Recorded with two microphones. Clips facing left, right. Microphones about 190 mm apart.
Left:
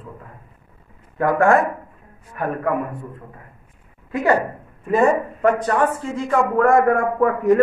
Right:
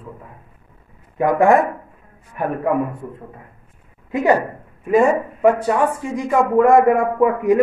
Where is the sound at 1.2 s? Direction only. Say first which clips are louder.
Right 2 dB; 15° right (ahead or behind).